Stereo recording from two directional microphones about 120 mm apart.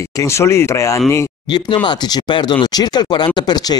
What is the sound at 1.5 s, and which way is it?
Speech, 40° left (ahead or behind).